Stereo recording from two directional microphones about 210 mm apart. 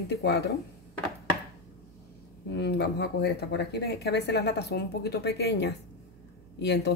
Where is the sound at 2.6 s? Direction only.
50° left (ahead or behind).